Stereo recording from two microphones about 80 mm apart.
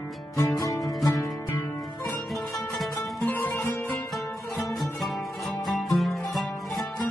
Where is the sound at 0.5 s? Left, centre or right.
Left.